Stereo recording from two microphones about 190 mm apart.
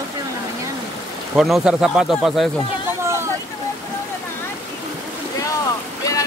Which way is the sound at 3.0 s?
15° right (ahead or behind).